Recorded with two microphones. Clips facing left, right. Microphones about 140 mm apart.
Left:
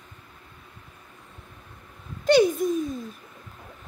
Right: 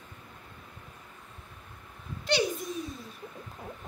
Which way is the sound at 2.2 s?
50° left (ahead or behind).